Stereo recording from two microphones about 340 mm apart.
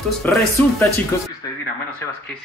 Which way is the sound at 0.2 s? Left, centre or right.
Centre.